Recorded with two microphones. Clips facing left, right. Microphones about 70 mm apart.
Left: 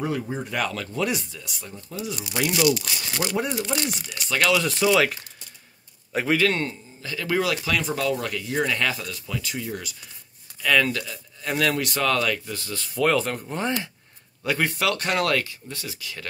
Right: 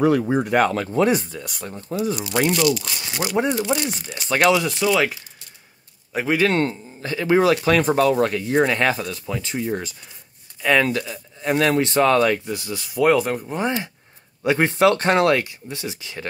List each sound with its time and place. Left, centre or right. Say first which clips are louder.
0.0 s speech: right 10 dB; right
0.5 s speech: right 9 dB; right
2.5 s speech: right 2 dB; centre
3.1 s speech: right 5 dB; centre
4.6 s speech: right 1 dB; centre
6.3 s speech: right 4 dB; right
12.5 s speech: right 4 dB; centre
14.4 s speech: right 7 dB; right